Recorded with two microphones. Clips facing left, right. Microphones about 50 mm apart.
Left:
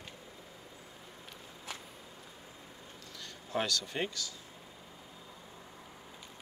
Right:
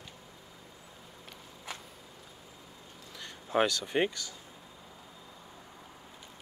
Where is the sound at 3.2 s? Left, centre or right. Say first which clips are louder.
Right 7 dB; right.